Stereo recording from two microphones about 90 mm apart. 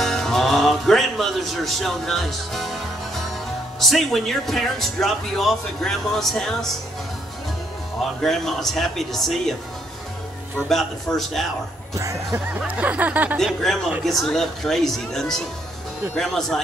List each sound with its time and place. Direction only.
0.0 s music: 5° left (ahead or behind)
3.8 s speech: centre (ahead or behind)
8.0 s speech: centre (ahead or behind)
10.7 s speech: centre (ahead or behind)
11.9 s speech: 35° right (ahead or behind)
12.5 s speech: 15° right (ahead or behind)
13.7 s speech: 5° left (ahead or behind)